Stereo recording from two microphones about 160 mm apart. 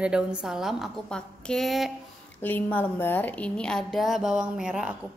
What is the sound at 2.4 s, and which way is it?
A woman's voice, 10° left (ahead or behind).